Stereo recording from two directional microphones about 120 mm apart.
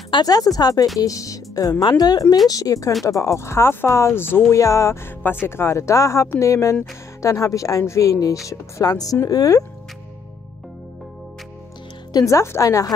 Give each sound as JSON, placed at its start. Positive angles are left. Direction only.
{"t": 0.1, "sound": "speech", "side_deg": 35}
{"t": 12.1, "sound": "speech", "side_deg": 30}